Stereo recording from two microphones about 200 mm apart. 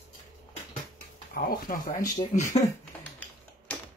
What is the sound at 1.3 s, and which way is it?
Speech, 45° left (ahead or behind).